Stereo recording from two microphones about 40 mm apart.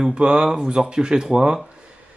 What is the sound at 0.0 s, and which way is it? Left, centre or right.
Speech, right.